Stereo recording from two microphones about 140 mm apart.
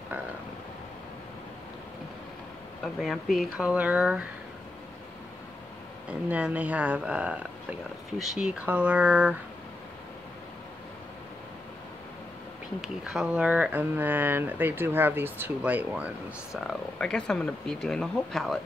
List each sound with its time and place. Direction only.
2.8 s speech: centre (ahead or behind)
6.0 s speech: 10° right (ahead or behind)
12.8 s speech: 5° right (ahead or behind)
16.5 s speech: 5° left (ahead or behind)